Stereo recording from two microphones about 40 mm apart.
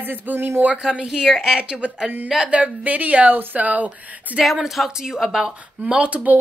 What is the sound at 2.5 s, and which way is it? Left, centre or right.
Speech, right.